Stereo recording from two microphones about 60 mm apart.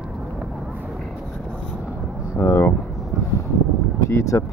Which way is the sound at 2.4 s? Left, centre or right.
Left.